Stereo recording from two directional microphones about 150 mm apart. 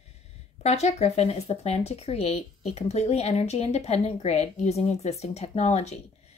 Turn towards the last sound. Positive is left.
turn(degrees=50)  # may be behind; listen again after turning